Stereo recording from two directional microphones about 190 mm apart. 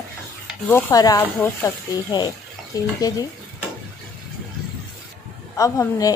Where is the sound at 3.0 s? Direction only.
20° left (ahead or behind).